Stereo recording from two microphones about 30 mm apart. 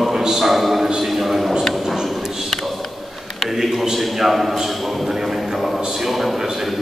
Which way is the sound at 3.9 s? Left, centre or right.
Centre.